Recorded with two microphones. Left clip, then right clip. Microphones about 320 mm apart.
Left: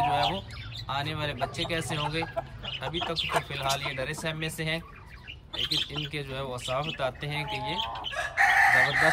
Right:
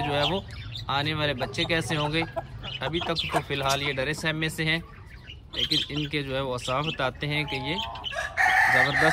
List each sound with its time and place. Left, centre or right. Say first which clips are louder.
0.0 s bird: even; centre
0.8 s speech: right 5 dB; centre
6.1 s speech: right 6 dB; centre
8.1 s chicken: right 1 dB; right